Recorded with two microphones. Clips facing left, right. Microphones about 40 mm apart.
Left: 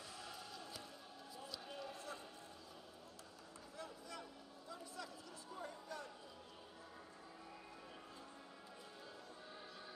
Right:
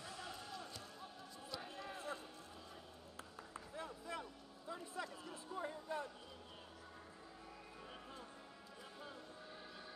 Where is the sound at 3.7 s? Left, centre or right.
Right.